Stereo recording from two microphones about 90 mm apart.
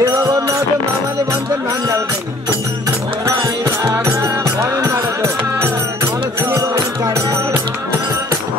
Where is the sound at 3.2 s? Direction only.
35° right (ahead or behind).